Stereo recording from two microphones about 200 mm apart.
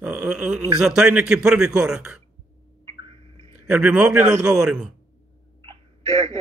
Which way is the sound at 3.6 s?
5° right (ahead or behind).